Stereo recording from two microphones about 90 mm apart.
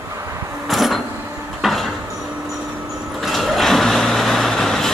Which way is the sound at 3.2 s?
Centre (ahead or behind).